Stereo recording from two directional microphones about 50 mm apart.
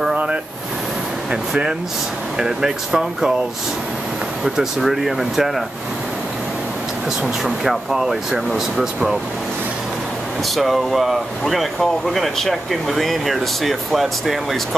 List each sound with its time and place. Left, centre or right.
0.1 s vehicle: right
1.3 s speech: centre
4.6 s speech: centre
7.4 s speech: centre
10.5 s speech: centre